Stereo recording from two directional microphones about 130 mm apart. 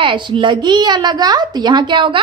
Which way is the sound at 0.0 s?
40° right (ahead or behind).